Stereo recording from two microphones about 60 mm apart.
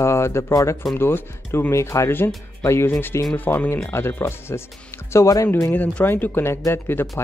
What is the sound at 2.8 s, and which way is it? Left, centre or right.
Speech, left.